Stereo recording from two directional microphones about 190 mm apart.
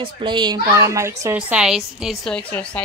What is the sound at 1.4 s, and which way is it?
A woman's voice, 5° right (ahead or behind).